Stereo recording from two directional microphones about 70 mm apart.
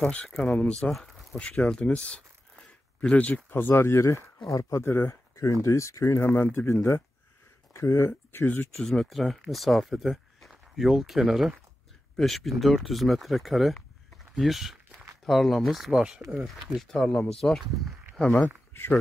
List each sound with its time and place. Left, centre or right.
0.0 s speech: centre
3.5 s speech: left
6.2 s speech: left
8.7 s speech: centre
16.7 s speech: centre
18.7 s a sound: left